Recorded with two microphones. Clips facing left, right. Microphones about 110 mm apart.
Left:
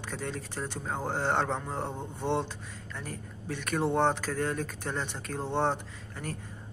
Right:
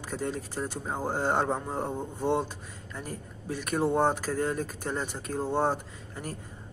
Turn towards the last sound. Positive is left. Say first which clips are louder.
# even
turn(degrees=-10)  # may be behind; listen again after turning